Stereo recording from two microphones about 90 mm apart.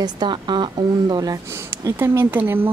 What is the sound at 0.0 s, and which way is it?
A woman's voice, 55° right (ahead or behind).